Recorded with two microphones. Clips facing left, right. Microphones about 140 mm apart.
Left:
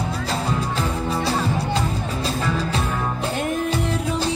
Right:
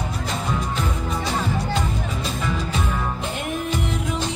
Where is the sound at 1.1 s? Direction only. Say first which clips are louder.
Left 3 dB; 35° left (ahead or behind).